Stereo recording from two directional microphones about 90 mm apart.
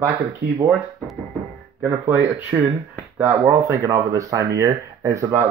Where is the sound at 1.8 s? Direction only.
25° right (ahead or behind).